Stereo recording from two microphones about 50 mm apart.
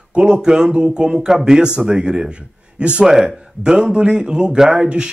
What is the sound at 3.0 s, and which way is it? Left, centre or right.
Speech, centre.